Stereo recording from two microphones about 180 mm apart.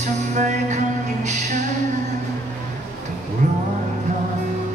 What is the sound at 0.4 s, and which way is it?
Music, 40° right (ahead or behind).